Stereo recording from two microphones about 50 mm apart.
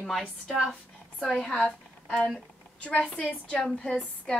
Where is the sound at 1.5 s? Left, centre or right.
Left.